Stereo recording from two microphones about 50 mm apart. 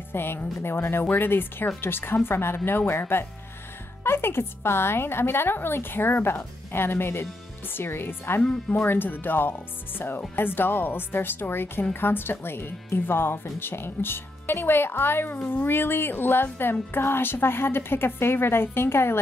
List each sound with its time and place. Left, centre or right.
0.1 s speech: left